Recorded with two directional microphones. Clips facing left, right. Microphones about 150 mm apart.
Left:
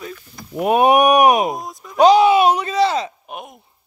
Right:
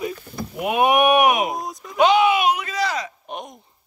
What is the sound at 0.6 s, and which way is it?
Speech, 40° left (ahead or behind).